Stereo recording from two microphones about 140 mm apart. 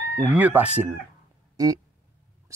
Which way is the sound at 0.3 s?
10° right (ahead or behind).